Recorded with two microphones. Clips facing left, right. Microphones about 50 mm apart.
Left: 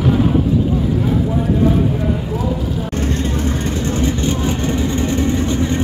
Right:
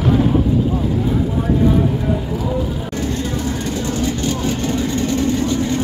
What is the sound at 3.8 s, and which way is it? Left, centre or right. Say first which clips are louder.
Vehicle: left 2 dB; left.